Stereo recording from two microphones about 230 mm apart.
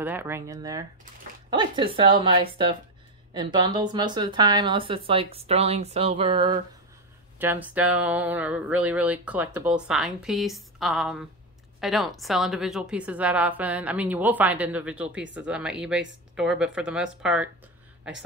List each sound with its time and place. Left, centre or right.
0.0 s speech: centre
7.3 s speech: centre